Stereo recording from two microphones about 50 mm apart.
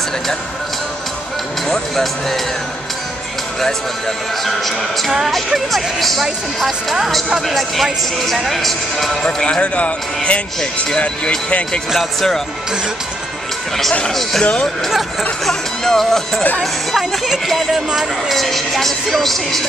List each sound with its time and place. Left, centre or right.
1.7 s speech: centre
4.5 s speech: centre
9.2 s a man's voice: centre
11.9 s speech: centre
14.4 s a man's voice: centre
15.4 s speech: centre